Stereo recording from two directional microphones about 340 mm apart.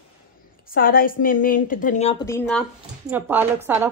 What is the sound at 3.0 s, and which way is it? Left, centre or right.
Speech, centre.